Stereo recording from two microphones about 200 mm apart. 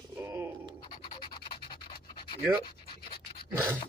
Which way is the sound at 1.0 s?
25° left (ahead or behind).